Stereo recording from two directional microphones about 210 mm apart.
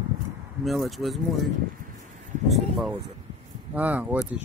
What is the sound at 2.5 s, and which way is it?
Speech, centre (ahead or behind).